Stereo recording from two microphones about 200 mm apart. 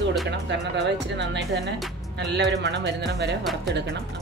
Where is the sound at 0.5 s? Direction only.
60° right (ahead or behind).